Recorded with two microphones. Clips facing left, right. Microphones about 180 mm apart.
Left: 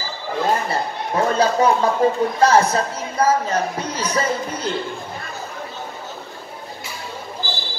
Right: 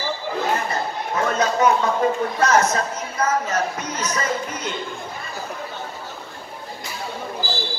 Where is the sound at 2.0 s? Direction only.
35° left (ahead or behind).